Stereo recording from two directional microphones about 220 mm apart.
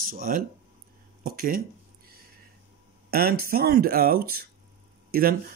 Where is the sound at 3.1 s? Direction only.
45° right (ahead or behind).